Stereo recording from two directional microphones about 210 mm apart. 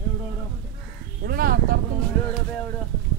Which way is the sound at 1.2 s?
45° right (ahead or behind).